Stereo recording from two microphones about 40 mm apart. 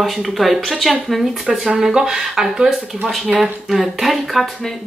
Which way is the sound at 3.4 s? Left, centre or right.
Centre.